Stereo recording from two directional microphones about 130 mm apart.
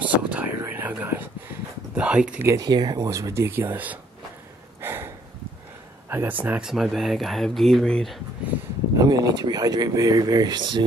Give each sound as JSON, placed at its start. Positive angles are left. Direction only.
{"t": 0.0, "sound": "whispering", "side_deg": -10}
{"t": 2.0, "sound": "speech", "side_deg": -10}
{"t": 2.4, "sound": "speech", "side_deg": -30}
{"t": 4.8, "sound": "a sound", "side_deg": -20}
{"t": 6.0, "sound": "speech", "side_deg": -15}
{"t": 6.7, "sound": "speech", "side_deg": 0}
{"t": 8.9, "sound": "speech", "side_deg": -30}